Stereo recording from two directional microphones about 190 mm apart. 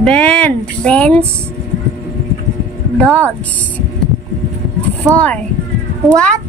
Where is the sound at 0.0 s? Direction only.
5° left (ahead or behind).